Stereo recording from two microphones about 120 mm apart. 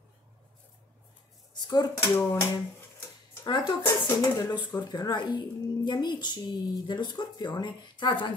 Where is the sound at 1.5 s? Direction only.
35° left (ahead or behind).